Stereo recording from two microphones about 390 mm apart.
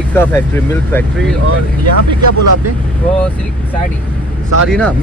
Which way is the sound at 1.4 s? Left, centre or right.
Right.